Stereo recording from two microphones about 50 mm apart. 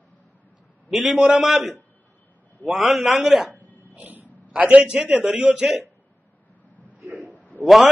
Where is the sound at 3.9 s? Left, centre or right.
Right.